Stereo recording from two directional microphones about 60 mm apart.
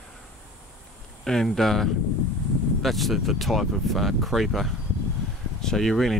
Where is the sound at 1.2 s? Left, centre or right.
Centre.